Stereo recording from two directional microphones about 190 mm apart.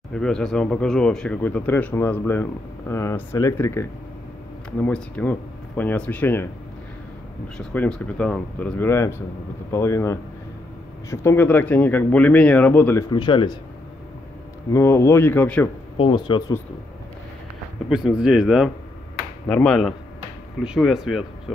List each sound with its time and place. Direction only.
0.1 s speech: 5° left (ahead or behind)
7.5 s speech: 5° left (ahead or behind)
13.1 s speech: 25° left (ahead or behind)
14.7 s speech: 15° left (ahead or behind)
16.0 s speech: 25° left (ahead or behind)
17.8 s speech: 5° right (ahead or behind)